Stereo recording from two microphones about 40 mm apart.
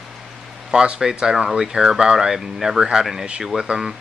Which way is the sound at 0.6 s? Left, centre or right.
Right.